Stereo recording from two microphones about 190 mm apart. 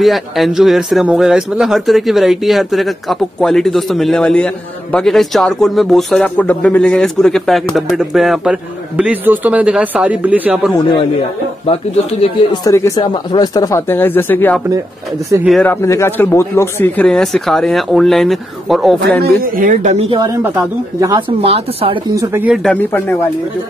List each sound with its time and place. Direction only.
0.0 s speech: centre (ahead or behind)
11.6 s speech: 30° left (ahead or behind)
12.6 s speech: 15° left (ahead or behind)
15.3 s speech: 20° right (ahead or behind)
15.6 s speech: 15° left (ahead or behind)
19.0 s speech: 50° right (ahead or behind); by 20.2 s 35° right (ahead or behind)
21.0 s speech: 20° right (ahead or behind)
21.5 s speech: 30° right (ahead or behind)
22.1 s speech: 15° right (ahead or behind)
22.6 s speech: 5° left (ahead or behind)